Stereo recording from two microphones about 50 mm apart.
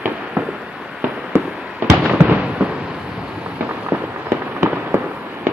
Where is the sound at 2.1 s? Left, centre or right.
Right.